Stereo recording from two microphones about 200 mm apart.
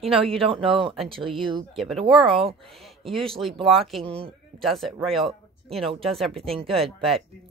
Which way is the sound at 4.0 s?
30° right (ahead or behind).